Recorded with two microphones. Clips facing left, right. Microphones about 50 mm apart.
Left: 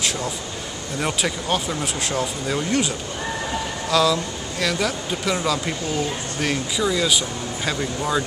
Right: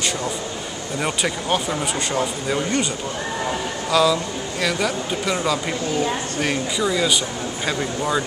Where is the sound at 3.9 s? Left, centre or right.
Centre.